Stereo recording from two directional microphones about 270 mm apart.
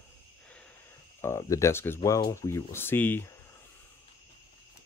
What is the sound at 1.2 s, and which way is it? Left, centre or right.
Speech, centre.